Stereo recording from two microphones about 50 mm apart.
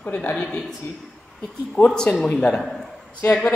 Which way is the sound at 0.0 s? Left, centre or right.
Left.